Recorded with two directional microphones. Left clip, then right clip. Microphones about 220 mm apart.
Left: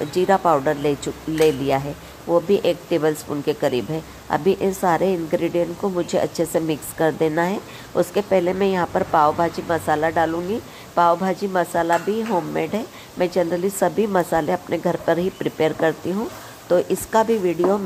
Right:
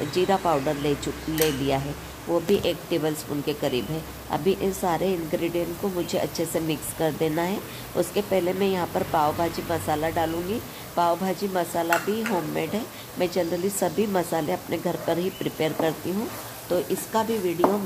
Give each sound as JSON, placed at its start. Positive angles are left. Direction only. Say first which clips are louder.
{"t": 0.1, "sound": "speech", "louder": "left 6 dB", "side_deg": 15}
{"t": 16.7, "sound": "speech", "louder": "left 7 dB", "side_deg": 25}